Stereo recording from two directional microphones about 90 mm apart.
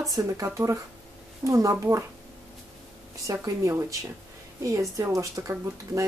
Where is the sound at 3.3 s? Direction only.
35° right (ahead or behind).